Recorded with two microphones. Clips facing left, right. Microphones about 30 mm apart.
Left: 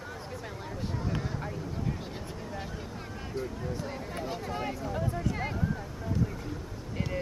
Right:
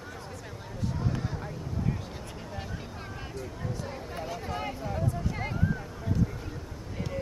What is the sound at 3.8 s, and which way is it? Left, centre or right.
Speech, centre.